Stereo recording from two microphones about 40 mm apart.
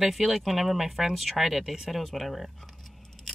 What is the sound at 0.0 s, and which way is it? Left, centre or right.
Speech, centre.